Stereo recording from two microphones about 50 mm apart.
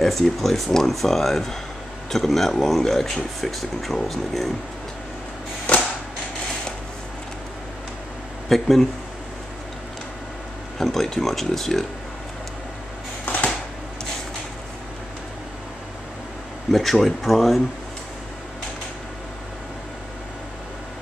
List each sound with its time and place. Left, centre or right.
0.0 s speech: centre
8.5 s speech: centre
10.8 s speech: centre
13.2 s a sound: left
16.7 s speech: centre